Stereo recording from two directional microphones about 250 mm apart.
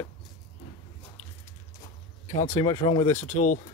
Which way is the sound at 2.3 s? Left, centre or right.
Left.